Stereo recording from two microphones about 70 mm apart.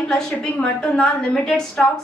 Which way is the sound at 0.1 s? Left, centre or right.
Centre.